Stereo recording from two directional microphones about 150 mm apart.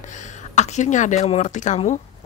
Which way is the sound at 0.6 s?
55° left (ahead or behind).